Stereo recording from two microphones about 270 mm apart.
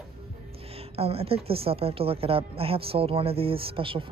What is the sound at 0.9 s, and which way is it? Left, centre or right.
Speech, right.